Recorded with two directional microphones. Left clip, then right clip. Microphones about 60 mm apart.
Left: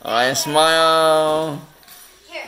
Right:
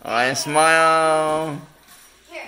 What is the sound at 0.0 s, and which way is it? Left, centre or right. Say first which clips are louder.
Speech: left 2 dB; left.